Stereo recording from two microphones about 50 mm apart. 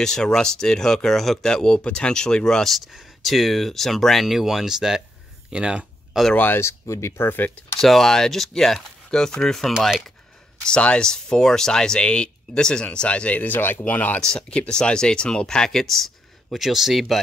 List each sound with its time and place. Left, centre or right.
0.0 s speech: centre
2.7 s speech: centre
6.3 s speech: left
6.6 s speech: left
7.2 s speech: left
7.8 s speech: centre
10.6 s speech: left
14.2 s speech: centre